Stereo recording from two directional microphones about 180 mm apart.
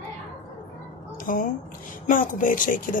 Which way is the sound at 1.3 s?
50° left (ahead or behind).